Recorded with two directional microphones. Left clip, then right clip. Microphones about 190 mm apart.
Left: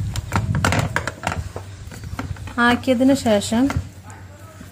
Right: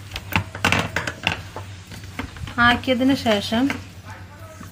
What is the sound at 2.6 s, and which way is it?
Speech, 55° left (ahead or behind).